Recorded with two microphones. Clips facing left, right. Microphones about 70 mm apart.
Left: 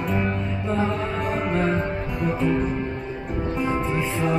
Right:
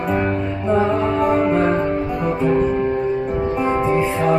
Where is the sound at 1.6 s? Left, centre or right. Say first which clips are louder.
Right 6 dB; right.